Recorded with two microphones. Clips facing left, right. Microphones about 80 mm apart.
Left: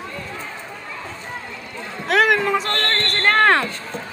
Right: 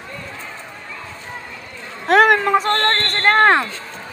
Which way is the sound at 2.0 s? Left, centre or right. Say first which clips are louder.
Right 4 dB; right.